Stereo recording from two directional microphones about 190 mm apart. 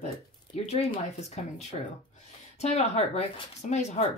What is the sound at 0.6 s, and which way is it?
Speech, 35° left (ahead or behind).